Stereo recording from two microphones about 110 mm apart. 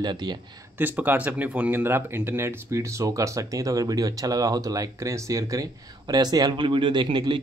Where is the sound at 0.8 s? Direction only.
15° right (ahead or behind).